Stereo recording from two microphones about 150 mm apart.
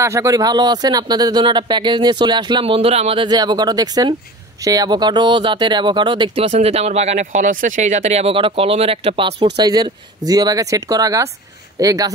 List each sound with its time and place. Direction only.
0.0 s speech: 20° right (ahead or behind); by 3.3 s 40° right (ahead or behind)
3.3 s speech: 25° right (ahead or behind)